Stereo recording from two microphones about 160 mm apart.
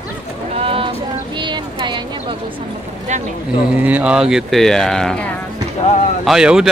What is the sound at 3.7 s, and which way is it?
A man's voice, 10° right (ahead or behind).